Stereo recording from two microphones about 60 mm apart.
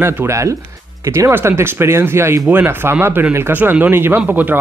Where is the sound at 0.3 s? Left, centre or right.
Right.